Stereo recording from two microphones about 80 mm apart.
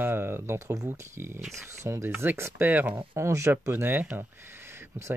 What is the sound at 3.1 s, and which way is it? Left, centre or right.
Speech, right.